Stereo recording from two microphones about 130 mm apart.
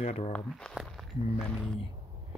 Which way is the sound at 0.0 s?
60° left (ahead or behind).